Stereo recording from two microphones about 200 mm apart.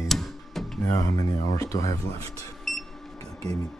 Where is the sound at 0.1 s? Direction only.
Centre (ahead or behind).